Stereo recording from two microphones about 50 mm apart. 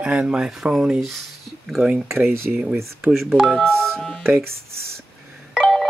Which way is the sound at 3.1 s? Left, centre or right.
Centre.